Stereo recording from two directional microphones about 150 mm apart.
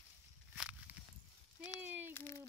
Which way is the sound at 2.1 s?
15° left (ahead or behind).